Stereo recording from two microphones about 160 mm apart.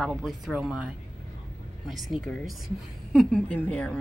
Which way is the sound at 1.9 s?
Centre (ahead or behind).